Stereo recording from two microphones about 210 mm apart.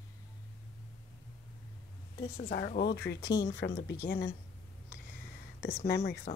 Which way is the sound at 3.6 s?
55° left (ahead or behind).